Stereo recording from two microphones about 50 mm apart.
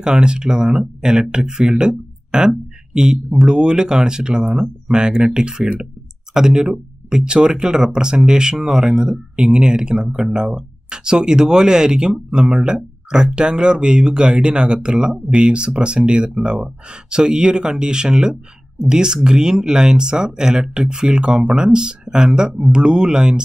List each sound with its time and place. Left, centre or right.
0.0 s speech: centre